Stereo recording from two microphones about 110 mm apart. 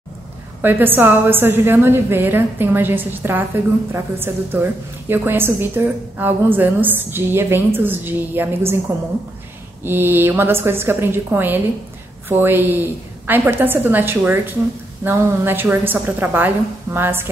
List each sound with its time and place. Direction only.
0.6 s a woman's voice: 20° right (ahead or behind)
9.8 s a woman's voice: 20° right (ahead or behind)